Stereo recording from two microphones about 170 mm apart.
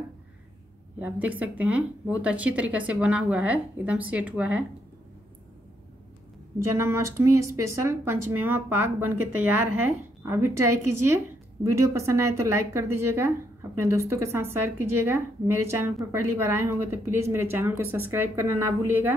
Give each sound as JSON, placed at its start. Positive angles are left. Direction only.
{"t": 0.9, "sound": "a woman's voice", "side_deg": -10}
{"t": 6.7, "sound": "a woman's voice", "side_deg": -15}